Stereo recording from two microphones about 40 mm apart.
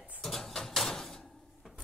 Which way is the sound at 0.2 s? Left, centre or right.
Centre.